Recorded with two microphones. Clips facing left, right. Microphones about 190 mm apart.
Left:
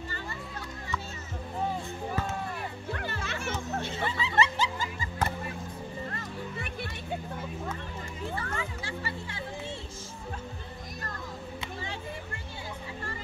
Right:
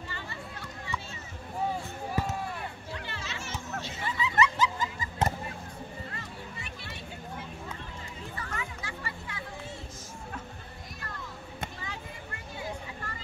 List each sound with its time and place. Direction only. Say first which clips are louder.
0.1 s music: left 2 dB; 45° left (ahead or behind)
2.2 s a sound: right 3 dB; 15° right (ahead or behind)
2.9 s music: left 5 dB; 50° left (ahead or behind)
3.9 s snicker: left 1 dB; 30° left (ahead or behind)
6.0 s music: left 4 dB; 50° left (ahead or behind)
8.4 s music: left 3 dB; 30° left (ahead or behind)